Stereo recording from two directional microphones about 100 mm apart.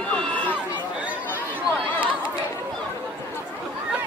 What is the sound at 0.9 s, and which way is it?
Chatter, 15° right (ahead or behind).